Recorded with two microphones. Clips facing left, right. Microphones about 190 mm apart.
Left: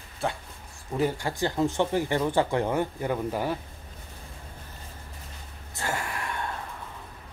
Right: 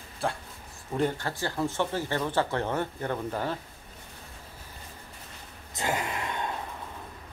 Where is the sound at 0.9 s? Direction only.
10° left (ahead or behind).